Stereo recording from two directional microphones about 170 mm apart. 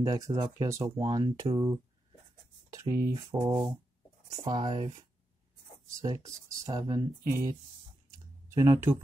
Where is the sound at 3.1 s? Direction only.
20° right (ahead or behind).